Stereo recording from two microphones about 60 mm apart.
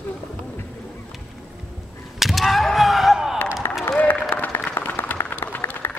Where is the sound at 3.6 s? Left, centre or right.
Left.